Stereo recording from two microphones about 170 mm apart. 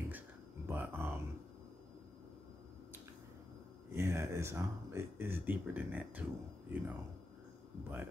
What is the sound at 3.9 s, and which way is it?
Speech, 15° right (ahead or behind).